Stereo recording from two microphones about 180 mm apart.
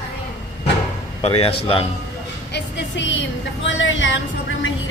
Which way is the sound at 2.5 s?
90° left.